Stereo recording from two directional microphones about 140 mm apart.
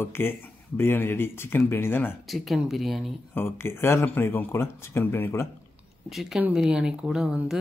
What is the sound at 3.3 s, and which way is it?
Speech, 15° left (ahead or behind).